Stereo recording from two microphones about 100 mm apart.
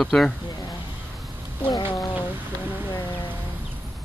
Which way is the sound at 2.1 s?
20° right (ahead or behind).